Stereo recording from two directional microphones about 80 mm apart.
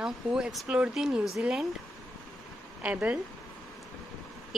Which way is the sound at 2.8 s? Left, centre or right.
Centre.